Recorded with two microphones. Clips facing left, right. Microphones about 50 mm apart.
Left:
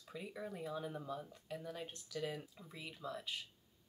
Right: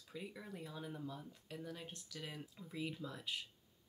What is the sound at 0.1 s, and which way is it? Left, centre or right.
Speech, centre.